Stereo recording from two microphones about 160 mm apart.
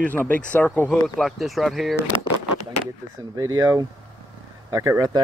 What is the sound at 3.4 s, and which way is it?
Speech, 25° right (ahead or behind).